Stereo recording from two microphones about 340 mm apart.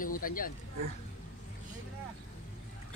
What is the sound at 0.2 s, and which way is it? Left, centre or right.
Speech, left.